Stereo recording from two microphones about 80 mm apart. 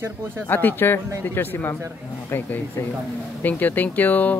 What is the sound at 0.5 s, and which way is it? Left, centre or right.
Speech, left.